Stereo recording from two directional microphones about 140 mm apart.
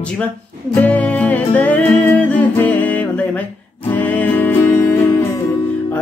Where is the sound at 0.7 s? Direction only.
10° left (ahead or behind).